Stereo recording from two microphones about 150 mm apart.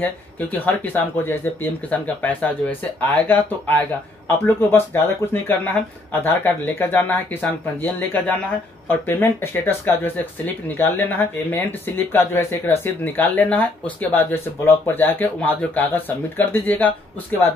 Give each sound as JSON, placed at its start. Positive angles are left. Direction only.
{"t": 0.0, "sound": "speech", "side_deg": 10}